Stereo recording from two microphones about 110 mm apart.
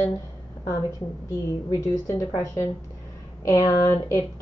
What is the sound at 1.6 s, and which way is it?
Speech, 30° left (ahead or behind).